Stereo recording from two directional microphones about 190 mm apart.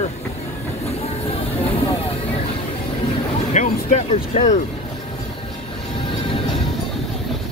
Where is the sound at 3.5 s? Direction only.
40° left (ahead or behind).